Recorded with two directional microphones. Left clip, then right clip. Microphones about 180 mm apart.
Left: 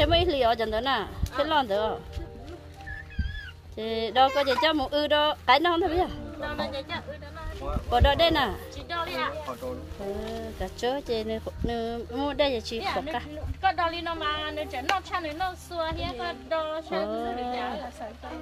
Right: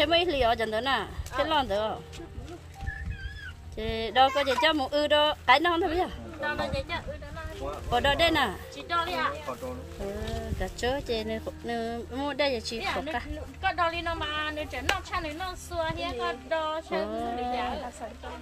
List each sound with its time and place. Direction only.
0.0 s speech: 15° left (ahead or behind)
3.7 s speech: 15° left (ahead or behind)
6.4 s speech: 5° right (ahead or behind)
7.9 s speech: 15° left (ahead or behind)
8.8 s speech: centre (ahead or behind)
10.2 s speech: 10° left (ahead or behind)
12.8 s a woman's voice: 10° right (ahead or behind)